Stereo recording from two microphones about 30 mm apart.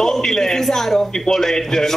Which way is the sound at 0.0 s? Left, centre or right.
Centre.